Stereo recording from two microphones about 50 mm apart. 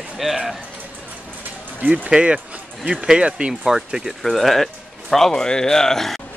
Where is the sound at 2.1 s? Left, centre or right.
Right.